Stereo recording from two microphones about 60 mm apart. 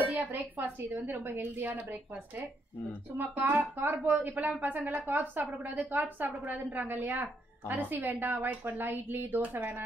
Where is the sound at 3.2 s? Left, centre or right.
Right.